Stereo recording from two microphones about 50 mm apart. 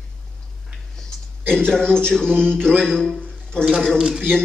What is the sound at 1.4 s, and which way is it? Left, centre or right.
A man's voice, centre.